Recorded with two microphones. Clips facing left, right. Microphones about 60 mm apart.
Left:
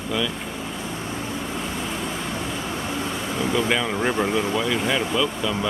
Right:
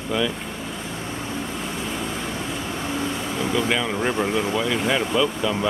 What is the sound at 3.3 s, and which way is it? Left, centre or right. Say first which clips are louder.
Speech: left 1 dB; centre.